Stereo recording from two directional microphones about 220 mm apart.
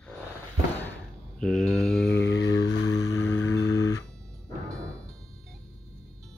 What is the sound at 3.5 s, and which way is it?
Music, 15° left (ahead or behind).